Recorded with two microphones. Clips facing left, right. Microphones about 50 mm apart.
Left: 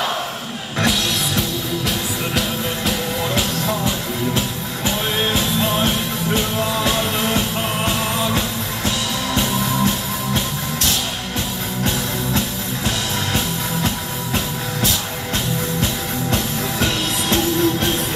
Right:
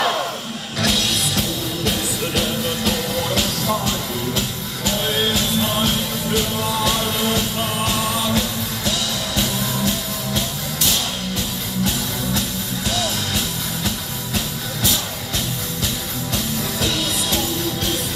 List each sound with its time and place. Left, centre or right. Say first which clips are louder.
0.8 s music: left 1 dB; centre
3.3 s music: even; left
12.4 s music: left 2 dB; left
15.8 s music: left 4 dB; left